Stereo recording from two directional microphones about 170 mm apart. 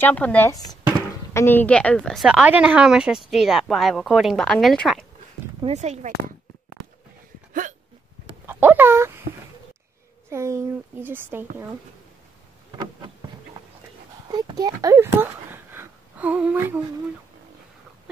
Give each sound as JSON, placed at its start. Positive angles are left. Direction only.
{"t": 0.0, "sound": "a woman's voice", "side_deg": 10}
{"t": 5.6, "sound": "speech", "side_deg": -40}
{"t": 6.8, "sound": "a sound", "side_deg": 0}
{"t": 8.5, "sound": "speech", "side_deg": -10}
{"t": 10.3, "sound": "speech", "side_deg": -15}
{"t": 12.7, "sound": "a sound", "side_deg": -30}
{"t": 14.3, "sound": "speech", "side_deg": -20}